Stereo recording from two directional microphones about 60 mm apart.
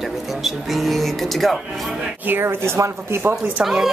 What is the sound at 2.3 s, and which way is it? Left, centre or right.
Speech, right.